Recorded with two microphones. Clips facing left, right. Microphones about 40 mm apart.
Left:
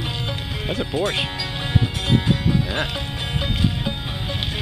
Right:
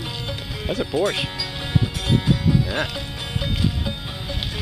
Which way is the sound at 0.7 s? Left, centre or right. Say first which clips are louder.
Right 2 dB; centre.